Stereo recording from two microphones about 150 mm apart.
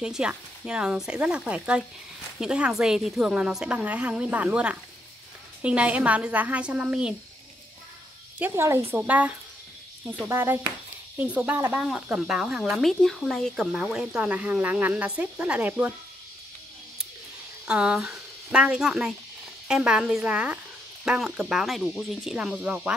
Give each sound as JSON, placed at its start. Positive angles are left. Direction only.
{"t": 0.0, "sound": "speech", "side_deg": -5}
{"t": 8.4, "sound": "speech", "side_deg": -15}
{"t": 17.6, "sound": "speech", "side_deg": -5}